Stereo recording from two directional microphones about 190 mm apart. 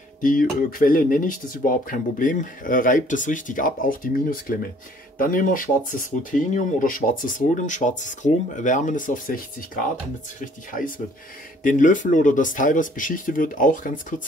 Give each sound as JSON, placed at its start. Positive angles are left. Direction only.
{"t": 0.2, "sound": "speech", "side_deg": 45}
{"t": 10.4, "sound": "speech", "side_deg": 45}